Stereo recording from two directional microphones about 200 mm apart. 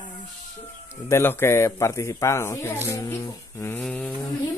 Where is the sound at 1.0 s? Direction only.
10° left (ahead or behind).